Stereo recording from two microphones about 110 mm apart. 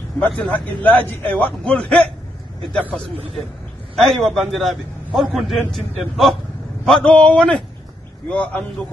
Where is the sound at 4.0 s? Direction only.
5° left (ahead or behind).